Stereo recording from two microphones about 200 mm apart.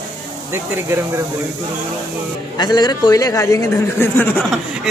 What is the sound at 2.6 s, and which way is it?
Speech, 20° left (ahead or behind).